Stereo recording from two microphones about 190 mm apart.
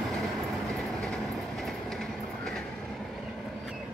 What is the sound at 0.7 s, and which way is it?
Train, centre (ahead or behind).